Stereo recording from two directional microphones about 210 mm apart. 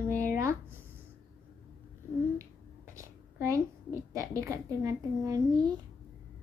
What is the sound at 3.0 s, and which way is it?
A woman's voice, 15° right (ahead or behind).